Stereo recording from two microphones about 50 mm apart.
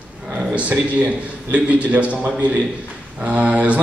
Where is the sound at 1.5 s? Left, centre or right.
Right.